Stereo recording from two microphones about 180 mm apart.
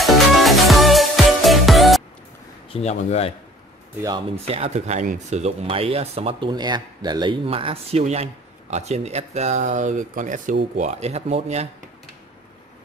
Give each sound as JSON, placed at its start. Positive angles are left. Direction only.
{"t": 0.0, "sound": "music", "side_deg": 0}
{"t": 2.7, "sound": "speech", "side_deg": 35}
{"t": 4.5, "sound": "speech", "side_deg": -35}